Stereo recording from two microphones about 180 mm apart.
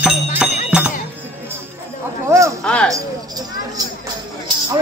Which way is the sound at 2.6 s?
5° left (ahead or behind).